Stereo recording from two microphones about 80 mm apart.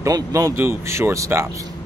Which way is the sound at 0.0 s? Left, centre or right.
Right.